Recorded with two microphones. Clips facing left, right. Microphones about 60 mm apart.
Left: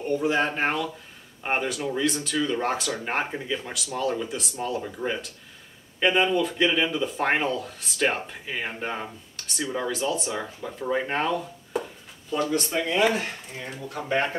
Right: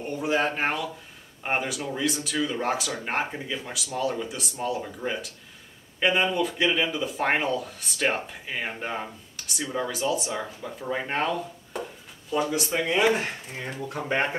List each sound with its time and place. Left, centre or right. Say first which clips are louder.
0.1 s speech: left 2 dB; centre
13.6 s speech: right 2 dB; right